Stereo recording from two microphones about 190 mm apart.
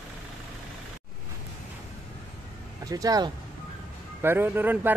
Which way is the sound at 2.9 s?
20° right (ahead or behind).